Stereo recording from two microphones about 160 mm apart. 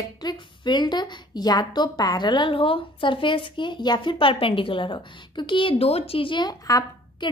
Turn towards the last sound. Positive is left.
turn(degrees=25)  # may be behind; listen again after turning